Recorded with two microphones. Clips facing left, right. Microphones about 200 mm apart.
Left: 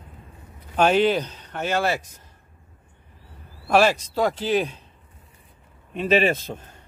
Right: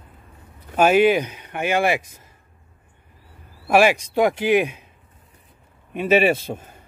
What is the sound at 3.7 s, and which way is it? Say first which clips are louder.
Speech: right 2 dB; 10° right (ahead or behind).